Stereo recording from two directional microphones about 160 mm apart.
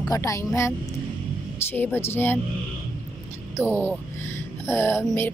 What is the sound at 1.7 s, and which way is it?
Speech, 10° left (ahead or behind).